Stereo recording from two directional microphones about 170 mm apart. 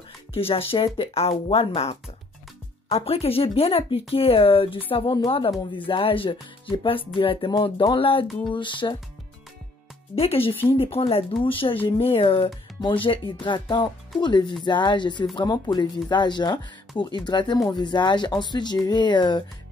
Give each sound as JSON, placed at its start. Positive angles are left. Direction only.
{"t": 0.3, "sound": "speech", "side_deg": 35}
{"t": 10.1, "sound": "speech", "side_deg": 35}